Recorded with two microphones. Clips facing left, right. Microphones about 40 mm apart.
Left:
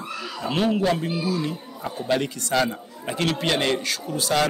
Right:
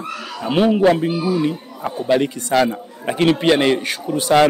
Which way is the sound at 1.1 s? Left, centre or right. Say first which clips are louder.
Right 7 dB; right.